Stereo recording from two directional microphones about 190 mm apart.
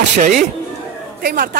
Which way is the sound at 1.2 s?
55° right (ahead or behind).